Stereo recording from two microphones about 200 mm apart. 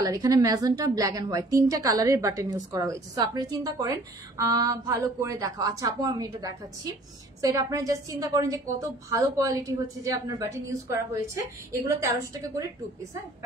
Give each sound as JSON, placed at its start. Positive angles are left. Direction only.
{"t": 0.0, "sound": "a woman's voice", "side_deg": -20}